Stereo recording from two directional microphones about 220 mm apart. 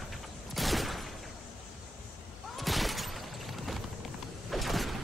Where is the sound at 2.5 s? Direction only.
Centre (ahead or behind).